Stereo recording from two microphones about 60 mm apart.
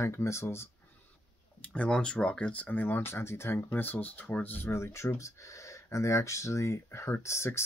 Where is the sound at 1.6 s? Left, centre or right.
Left.